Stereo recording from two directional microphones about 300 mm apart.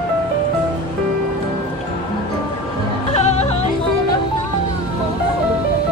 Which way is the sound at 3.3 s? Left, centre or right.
Left.